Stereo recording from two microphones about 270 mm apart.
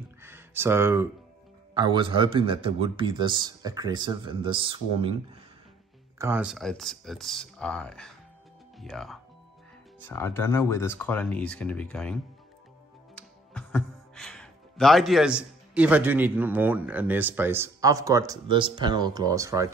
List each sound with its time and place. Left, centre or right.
0.2 s a sound: centre
1.7 s a man's voice: centre
6.1 s speech: centre